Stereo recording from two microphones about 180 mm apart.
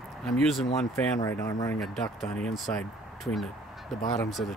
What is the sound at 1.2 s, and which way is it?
Speech, 20° left (ahead or behind).